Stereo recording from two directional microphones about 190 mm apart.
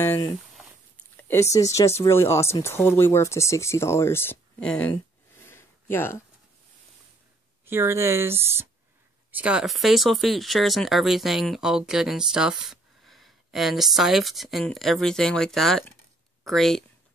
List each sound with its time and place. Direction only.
0.0 s speech: 15° left (ahead or behind)
5.4 s a sound: 15° left (ahead or behind)
7.6 s speech: 15° right (ahead or behind)